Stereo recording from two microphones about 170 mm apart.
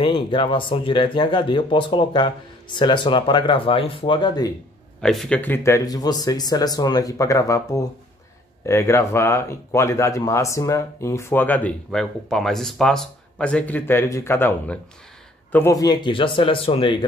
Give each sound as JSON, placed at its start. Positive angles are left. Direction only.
{"t": 0.0, "sound": "speech", "side_deg": 30}
{"t": 5.0, "sound": "speech", "side_deg": 5}